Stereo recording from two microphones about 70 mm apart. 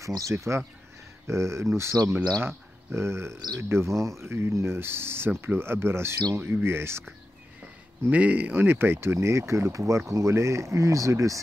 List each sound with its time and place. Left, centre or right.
0.0 s speech: right
8.1 s speech: right